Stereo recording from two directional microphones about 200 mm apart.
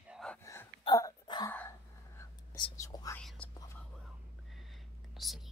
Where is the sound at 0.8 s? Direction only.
20° left (ahead or behind).